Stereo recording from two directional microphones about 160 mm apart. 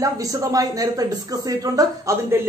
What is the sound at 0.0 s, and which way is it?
Speech, 20° right (ahead or behind).